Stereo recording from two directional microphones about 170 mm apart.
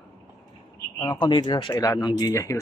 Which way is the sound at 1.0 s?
25° left (ahead or behind).